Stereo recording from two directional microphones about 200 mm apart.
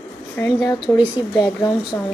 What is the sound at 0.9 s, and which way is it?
A woman's voice, 10° left (ahead or behind).